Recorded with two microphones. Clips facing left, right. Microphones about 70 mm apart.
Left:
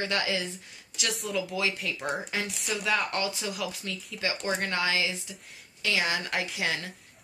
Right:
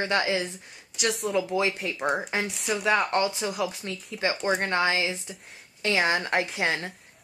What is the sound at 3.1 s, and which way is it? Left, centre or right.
A woman's voice, right.